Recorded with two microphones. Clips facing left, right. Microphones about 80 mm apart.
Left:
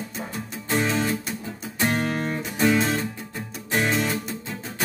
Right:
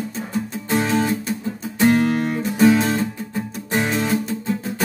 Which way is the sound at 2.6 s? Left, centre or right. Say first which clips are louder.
Right 6 dB; centre.